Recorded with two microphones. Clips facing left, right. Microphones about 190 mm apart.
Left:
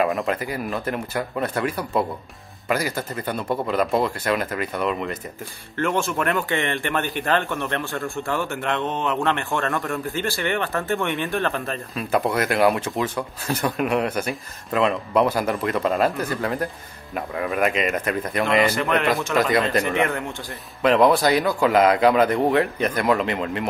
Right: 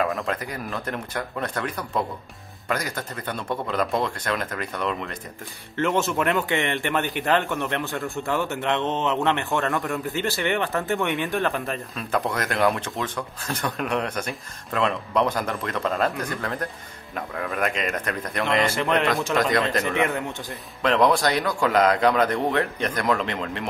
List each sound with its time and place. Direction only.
0.0 s speech: 5° left (ahead or behind)
5.8 s a man's voice: 20° right (ahead or behind)
11.9 s speech: 5° left (ahead or behind)
18.8 s speech: 30° right (ahead or behind)
19.3 s speech: 5° left (ahead or behind)